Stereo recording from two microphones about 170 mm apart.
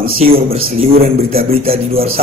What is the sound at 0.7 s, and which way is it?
Speech, 35° right (ahead or behind).